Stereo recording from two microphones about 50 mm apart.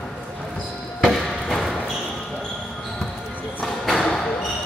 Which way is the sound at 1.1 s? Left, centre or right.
Centre.